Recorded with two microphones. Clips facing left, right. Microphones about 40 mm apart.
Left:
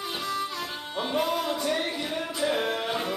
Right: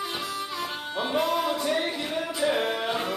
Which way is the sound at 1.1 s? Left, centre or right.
Centre.